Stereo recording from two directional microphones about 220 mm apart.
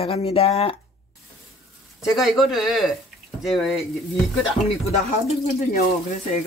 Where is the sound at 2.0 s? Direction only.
Centre (ahead or behind).